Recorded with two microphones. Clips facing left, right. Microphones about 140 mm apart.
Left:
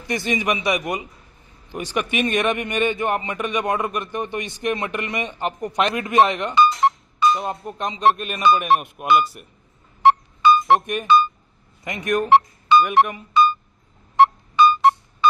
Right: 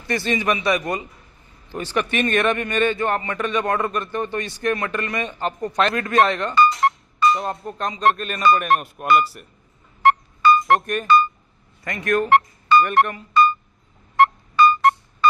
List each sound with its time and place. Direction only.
0.0 s a man's voice: 15° left (ahead or behind)
6.7 s music: centre (ahead or behind)
7.7 s speech: 20° left (ahead or behind)
8.0 s speech: 5° left (ahead or behind)
10.5 s speech: centre (ahead or behind)
11.8 s speech: 20° left (ahead or behind)
12.7 s speech: 5° left (ahead or behind)
14.2 s music: centre (ahead or behind)